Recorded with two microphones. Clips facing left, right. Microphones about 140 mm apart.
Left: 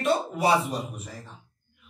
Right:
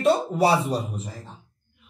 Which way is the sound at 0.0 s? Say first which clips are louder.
Right 4 dB; 35° right (ahead or behind).